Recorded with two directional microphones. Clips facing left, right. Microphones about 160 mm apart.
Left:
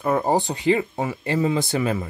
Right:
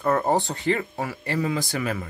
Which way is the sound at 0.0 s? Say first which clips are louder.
Left 1 dB; 10° left (ahead or behind).